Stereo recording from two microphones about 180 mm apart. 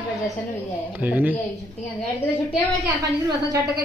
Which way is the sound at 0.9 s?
10° right (ahead or behind).